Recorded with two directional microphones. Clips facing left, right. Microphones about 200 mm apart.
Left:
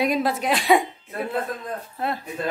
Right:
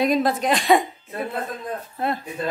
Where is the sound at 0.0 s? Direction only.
10° left (ahead or behind).